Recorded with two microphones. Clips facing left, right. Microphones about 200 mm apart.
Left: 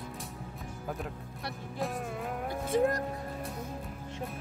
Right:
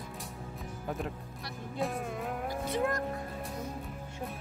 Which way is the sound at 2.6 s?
40° left (ahead or behind).